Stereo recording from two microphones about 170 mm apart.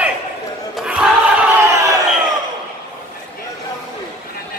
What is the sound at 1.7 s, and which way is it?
Crowd, 20° right (ahead or behind).